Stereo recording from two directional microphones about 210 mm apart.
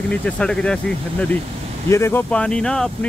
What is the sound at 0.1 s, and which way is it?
Speech, 5° left (ahead or behind).